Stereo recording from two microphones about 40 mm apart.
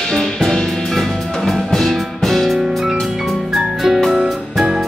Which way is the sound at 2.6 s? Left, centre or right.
Centre.